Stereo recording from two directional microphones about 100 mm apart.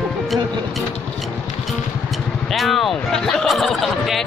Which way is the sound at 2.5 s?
Centre (ahead or behind).